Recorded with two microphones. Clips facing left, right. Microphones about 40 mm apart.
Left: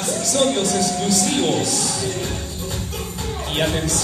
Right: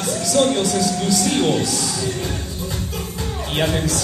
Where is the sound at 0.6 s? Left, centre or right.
Left.